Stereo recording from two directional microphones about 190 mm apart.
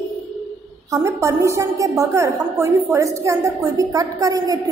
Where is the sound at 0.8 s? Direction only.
15° right (ahead or behind).